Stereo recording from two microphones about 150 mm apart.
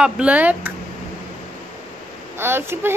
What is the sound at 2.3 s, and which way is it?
Speech, 15° right (ahead or behind).